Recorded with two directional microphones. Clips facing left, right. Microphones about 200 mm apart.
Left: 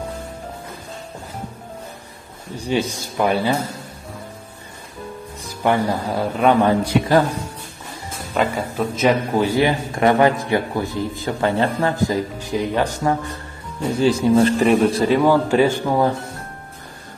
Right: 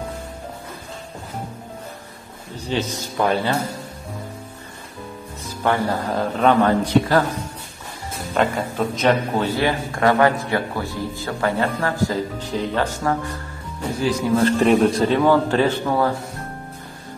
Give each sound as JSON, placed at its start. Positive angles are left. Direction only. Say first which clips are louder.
{"t": 2.5, "sound": "a man's voice", "louder": "left 3 dB", "side_deg": 10}
{"t": 5.6, "sound": "a man's voice", "louder": "left 2 dB", "side_deg": 15}
{"t": 8.4, "sound": "a man's voice", "louder": "even", "side_deg": 5}
{"t": 14.2, "sound": "speech", "louder": "left 5 dB", "side_deg": 25}
{"t": 14.6, "sound": "a man's voice", "louder": "even", "side_deg": 0}